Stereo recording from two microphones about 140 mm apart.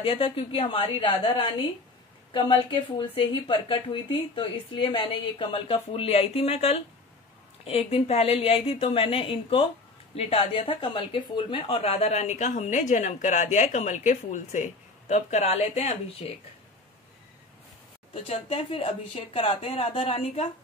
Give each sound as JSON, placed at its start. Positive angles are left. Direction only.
{"t": 0.0, "sound": "a woman's voice", "side_deg": 40}
{"t": 18.2, "sound": "speech", "side_deg": 45}